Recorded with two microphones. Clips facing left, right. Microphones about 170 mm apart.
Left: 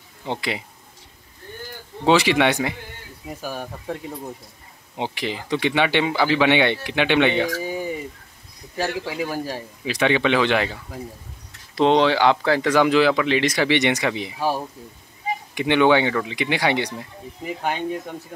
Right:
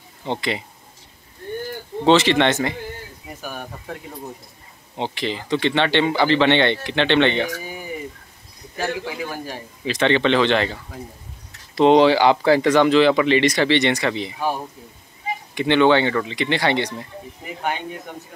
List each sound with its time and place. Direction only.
0.2 s speech: 5° left (ahead or behind)
2.0 s speech: 10° left (ahead or behind)
4.9 s speech: 10° left (ahead or behind)
7.6 s a sound: 30° left (ahead or behind)
8.7 s a man's voice: 35° left (ahead or behind)
9.8 s speech: 10° left (ahead or behind)
11.7 s speech: 5° right (ahead or behind)
12.7 s speech: 5° left (ahead or behind)
15.5 s speech: 10° left (ahead or behind)